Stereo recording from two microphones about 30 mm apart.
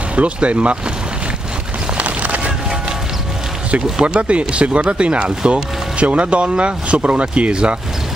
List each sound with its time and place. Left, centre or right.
0.1 s speech: right
2.0 s a sound: right
3.7 s speech: right